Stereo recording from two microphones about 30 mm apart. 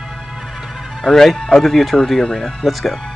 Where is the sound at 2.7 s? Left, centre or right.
Centre.